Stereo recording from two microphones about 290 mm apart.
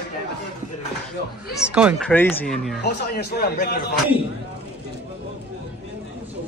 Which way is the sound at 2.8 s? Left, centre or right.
Left.